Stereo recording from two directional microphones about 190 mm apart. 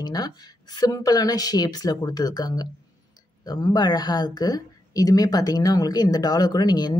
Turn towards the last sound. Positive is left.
turn(degrees=20)  # may be behind; listen again after turning